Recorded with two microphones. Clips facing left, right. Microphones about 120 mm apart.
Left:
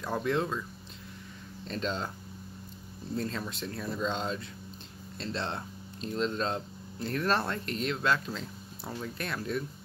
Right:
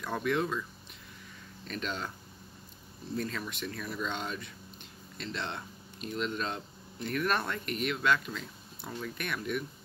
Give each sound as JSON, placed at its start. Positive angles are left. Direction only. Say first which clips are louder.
{"t": 0.0, "sound": "speech", "louder": "left 1 dB", "side_deg": 25}
{"t": 1.7, "sound": "speech", "louder": "left 3 dB", "side_deg": 25}
{"t": 3.2, "sound": "speech", "louder": "left 1 dB", "side_deg": 25}